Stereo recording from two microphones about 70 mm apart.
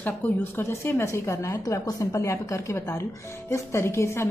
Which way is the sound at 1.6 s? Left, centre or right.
Left.